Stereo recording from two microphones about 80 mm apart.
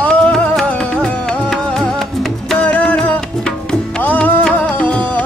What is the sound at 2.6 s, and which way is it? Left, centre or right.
Music, centre.